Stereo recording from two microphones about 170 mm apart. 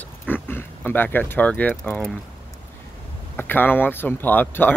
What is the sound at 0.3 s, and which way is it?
Speech, 10° left (ahead or behind).